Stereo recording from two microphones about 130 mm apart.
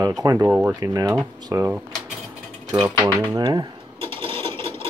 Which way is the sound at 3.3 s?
30° right (ahead or behind).